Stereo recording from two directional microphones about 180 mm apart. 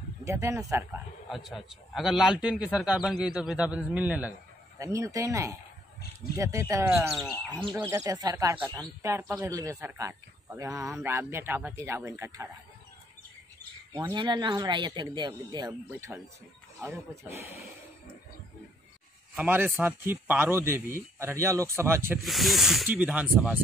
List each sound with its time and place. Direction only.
0.2 s speech: 15° right (ahead or behind)
1.3 s a man's voice: centre (ahead or behind)
7.1 s a man's voice: centre (ahead or behind)
7.5 s a man's voice: 20° right (ahead or behind)
13.9 s a man's voice: 25° right (ahead or behind)
19.3 s speech: 10° right (ahead or behind)
22.2 s a man's voice: centre (ahead or behind)